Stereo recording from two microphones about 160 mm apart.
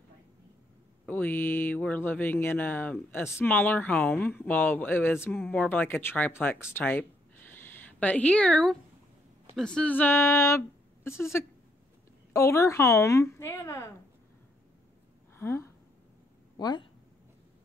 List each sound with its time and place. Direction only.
1.0 s speech: 10° left (ahead or behind)
6.7 s a sound: 10° left (ahead or behind)
9.6 s speech: 5° left (ahead or behind)
12.3 s speech: 20° left (ahead or behind)
15.3 s a sound: 15° left (ahead or behind)
16.5 s speech: 25° left (ahead or behind)